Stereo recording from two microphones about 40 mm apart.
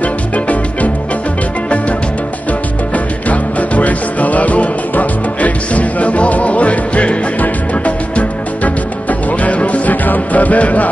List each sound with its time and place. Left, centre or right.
3.3 s music: left